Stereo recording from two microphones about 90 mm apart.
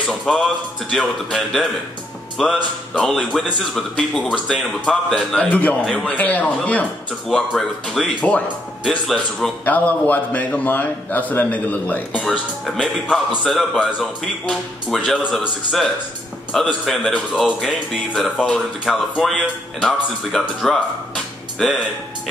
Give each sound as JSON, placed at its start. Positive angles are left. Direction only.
{"t": 0.3, "sound": "a man's voice", "side_deg": 0}
{"t": 7.2, "sound": "a man's voice", "side_deg": 5}
{"t": 9.7, "sound": "a man's voice", "side_deg": 20}
{"t": 12.2, "sound": "a man's voice", "side_deg": 5}